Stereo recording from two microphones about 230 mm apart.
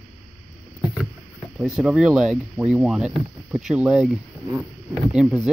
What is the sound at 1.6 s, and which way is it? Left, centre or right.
Speech, centre.